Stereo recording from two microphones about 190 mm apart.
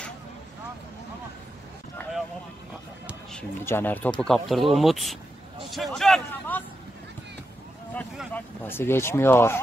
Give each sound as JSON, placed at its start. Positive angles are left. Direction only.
{"t": 3.3, "sound": "a man's voice", "side_deg": 10}
{"t": 8.3, "sound": "speech", "side_deg": 10}